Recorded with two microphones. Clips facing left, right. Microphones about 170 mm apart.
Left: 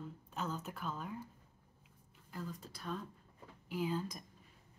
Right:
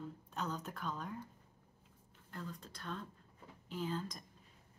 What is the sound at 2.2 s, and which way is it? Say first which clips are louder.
Speech: left 2 dB; 5° left (ahead or behind).